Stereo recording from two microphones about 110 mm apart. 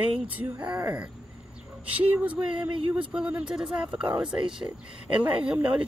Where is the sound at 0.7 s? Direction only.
15° right (ahead or behind).